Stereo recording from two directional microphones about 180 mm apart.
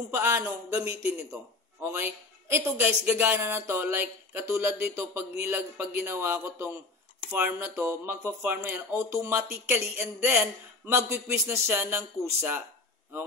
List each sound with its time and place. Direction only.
0.1 s speech: 15° right (ahead or behind)